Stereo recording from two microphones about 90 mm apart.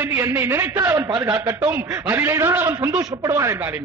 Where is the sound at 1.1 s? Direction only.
55° right (ahead or behind).